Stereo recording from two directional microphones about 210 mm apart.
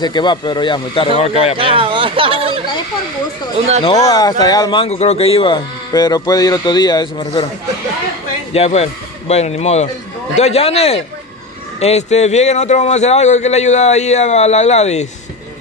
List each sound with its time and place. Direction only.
0.0 s speech: 20° left (ahead or behind)
1.6 s speech: 25° right (ahead or behind)
3.8 s speech: 20° left (ahead or behind)
8.5 s a man's voice: 30° left (ahead or behind)